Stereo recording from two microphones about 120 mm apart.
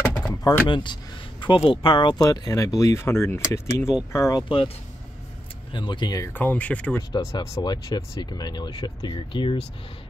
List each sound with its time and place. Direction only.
0.0 s a sound: 5° left (ahead or behind)
0.3 s a sound: 30° left (ahead or behind)
0.7 s speech: 40° left (ahead or behind)
2.1 s speech: 30° left (ahead or behind)
5.7 s speech: 40° left (ahead or behind)
6.3 s speech: 15° left (ahead or behind)
7.0 s speech: 25° left (ahead or behind)
7.6 s speech: 40° left (ahead or behind)